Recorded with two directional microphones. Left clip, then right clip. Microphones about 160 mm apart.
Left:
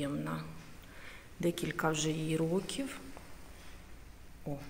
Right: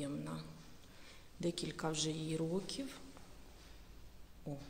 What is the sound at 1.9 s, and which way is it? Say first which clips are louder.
Speech: left 6 dB; 15° right (ahead or behind).